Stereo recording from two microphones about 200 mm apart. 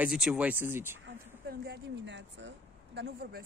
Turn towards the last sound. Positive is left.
turn(degrees=-55)  # may be behind; listen again after turning